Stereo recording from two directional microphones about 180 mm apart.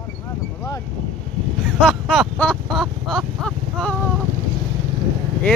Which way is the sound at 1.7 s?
Centre (ahead or behind).